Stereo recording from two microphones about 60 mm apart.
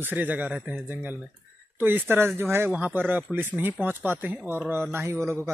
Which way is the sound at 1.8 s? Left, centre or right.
Right.